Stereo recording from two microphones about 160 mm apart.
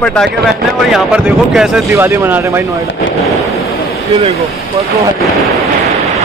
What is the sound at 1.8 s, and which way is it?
Speech, 15° right (ahead or behind).